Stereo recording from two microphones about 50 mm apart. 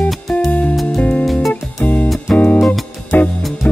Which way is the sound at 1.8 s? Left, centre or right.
Left.